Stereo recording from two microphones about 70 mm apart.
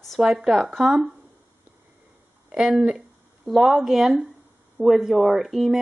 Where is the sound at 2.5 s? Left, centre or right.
Centre.